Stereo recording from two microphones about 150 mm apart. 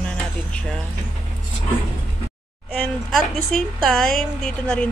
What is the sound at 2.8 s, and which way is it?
A woman's voice, 5° left (ahead or behind).